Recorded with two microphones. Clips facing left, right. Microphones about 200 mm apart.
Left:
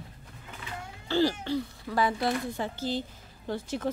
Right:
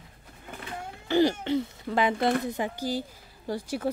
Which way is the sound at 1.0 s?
15° right (ahead or behind).